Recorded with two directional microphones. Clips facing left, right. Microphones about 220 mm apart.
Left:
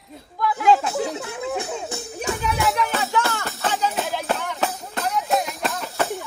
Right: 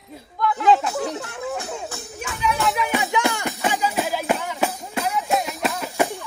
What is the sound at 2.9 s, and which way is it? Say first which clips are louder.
Music: right 2 dB; 15° right (ahead or behind).